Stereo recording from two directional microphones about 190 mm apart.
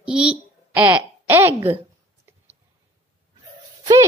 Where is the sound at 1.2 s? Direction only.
15° right (ahead or behind).